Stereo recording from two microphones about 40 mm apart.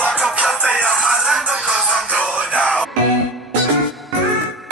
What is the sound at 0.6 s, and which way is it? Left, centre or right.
Music, right.